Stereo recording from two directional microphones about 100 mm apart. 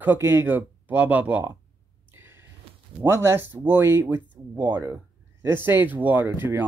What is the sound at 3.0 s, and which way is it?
Speech, 25° right (ahead or behind).